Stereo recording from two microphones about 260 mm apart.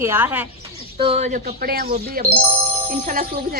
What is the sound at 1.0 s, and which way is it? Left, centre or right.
Speech, right.